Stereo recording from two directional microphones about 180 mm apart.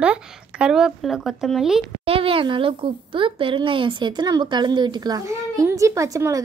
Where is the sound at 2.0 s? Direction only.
30° right (ahead or behind).